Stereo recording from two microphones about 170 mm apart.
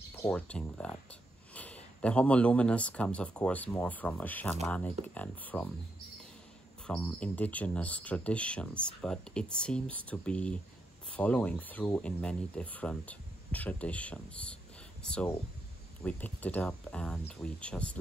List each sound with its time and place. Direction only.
0.3 s speech: 5° left (ahead or behind)
6.9 s speech: 5° left (ahead or behind)